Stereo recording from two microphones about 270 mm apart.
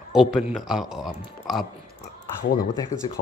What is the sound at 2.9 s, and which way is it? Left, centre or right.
Speech, left.